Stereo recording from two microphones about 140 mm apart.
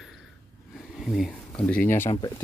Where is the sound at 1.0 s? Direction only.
Centre (ahead or behind).